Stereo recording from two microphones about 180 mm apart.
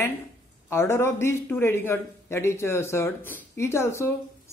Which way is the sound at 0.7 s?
15° left (ahead or behind).